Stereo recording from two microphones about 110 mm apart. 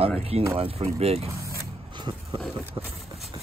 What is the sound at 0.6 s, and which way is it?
Speech, 65° right (ahead or behind).